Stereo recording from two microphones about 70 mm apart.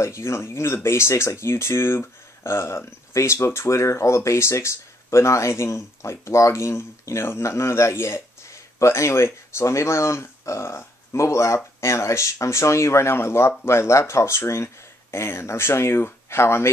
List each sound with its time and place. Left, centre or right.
0.0 s speech: left